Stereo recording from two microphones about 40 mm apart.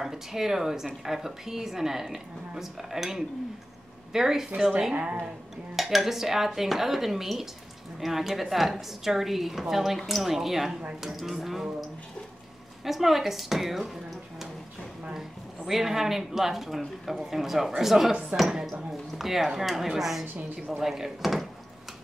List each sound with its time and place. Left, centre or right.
0.0 s a woman's voice: centre
5.8 s a woman's voice: centre
12.8 s a woman's voice: centre
15.1 s a woman's voice: centre